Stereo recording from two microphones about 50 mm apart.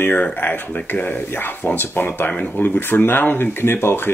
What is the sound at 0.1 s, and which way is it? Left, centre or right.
Speech, left.